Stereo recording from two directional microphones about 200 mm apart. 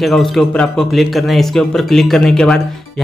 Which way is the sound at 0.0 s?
Centre (ahead or behind).